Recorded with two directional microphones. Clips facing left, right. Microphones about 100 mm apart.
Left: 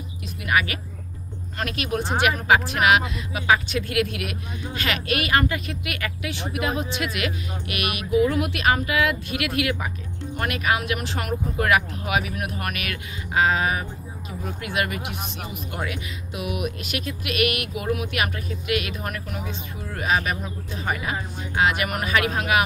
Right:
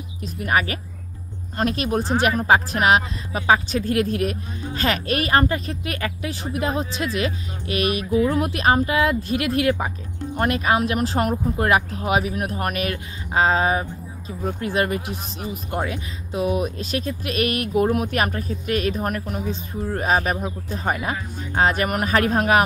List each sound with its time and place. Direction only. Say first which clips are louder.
0.4 s speech: right 2 dB; 35° right (ahead or behind)